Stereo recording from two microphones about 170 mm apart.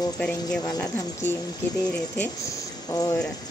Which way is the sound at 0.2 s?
5° left (ahead or behind).